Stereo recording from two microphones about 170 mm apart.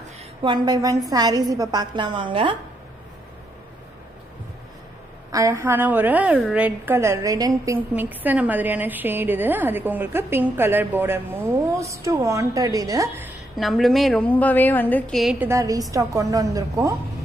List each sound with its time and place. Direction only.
0.4 s a woman's voice: 25° right (ahead or behind)
5.3 s a woman's voice: 15° right (ahead or behind)
13.6 s a woman's voice: centre (ahead or behind)
15.4 s a woman's voice: 20° right (ahead or behind)